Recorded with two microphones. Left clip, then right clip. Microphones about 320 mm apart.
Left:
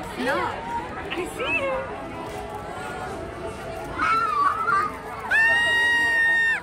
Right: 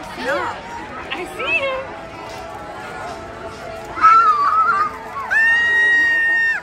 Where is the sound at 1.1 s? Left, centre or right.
Right.